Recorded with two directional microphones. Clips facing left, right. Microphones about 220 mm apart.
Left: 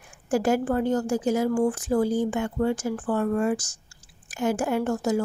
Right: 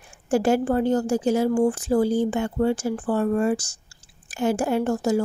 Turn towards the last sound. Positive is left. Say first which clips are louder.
# right 2 dB
turn(degrees=-30)  # may be behind; listen again after turning